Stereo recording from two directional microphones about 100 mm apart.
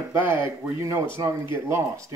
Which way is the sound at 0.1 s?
25° right (ahead or behind).